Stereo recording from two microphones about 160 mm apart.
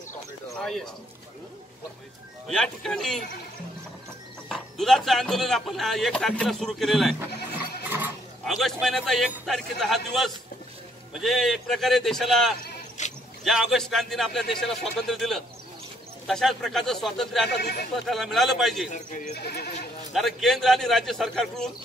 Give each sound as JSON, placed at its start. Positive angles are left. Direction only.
{"t": 0.6, "sound": "speech", "side_deg": 0}
{"t": 2.4, "sound": "speech", "side_deg": 5}
{"t": 4.5, "sound": "speech", "side_deg": 0}
{"t": 8.5, "sound": "speech", "side_deg": 0}
{"t": 13.0, "sound": "a sound", "side_deg": 50}
{"t": 13.4, "sound": "speech", "side_deg": 0}
{"t": 17.5, "sound": "speech", "side_deg": 90}
{"t": 17.9, "sound": "speech", "side_deg": 0}
{"t": 18.9, "sound": "speech", "side_deg": 50}
{"t": 19.4, "sound": "speech", "side_deg": 85}
{"t": 20.1, "sound": "speech", "side_deg": 0}